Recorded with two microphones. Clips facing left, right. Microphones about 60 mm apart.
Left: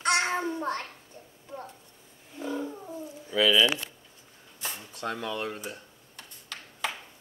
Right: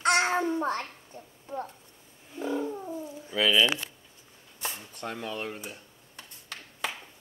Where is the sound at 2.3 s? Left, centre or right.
Centre.